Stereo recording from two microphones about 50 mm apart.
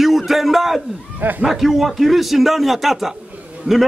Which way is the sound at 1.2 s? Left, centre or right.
Right.